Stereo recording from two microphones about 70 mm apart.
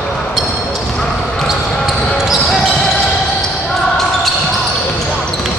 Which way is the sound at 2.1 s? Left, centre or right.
Centre.